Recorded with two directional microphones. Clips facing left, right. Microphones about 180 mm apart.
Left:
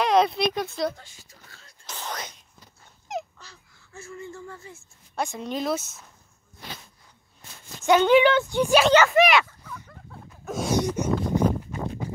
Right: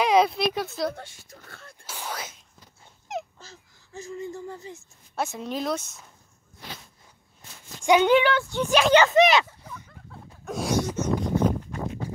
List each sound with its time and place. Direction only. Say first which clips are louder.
0.0 s speech: even; centre (ahead or behind)
0.9 s speech: right 8 dB; 55° right (ahead or behind)
1.9 s whispering: even; 10° right (ahead or behind)
3.1 s dog: left 1 dB; centre (ahead or behind)
3.9 s speech: right 4 dB; 20° right (ahead or behind)
5.1 s speech: even; 5° right (ahead or behind)
7.8 s speech: even; 10° right (ahead or behind)
8.2 s speech: left 4 dB; 20° left (ahead or behind)
8.9 s speech: right 1 dB; 20° right (ahead or behind)
10.1 s a sound: left 1 dB; centre (ahead or behind)
11.0 s speech: left 1 dB; 10° left (ahead or behind)